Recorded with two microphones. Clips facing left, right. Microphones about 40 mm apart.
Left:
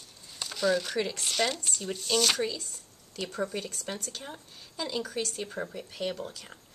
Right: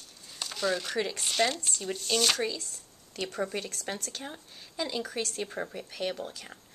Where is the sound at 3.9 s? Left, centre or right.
Right.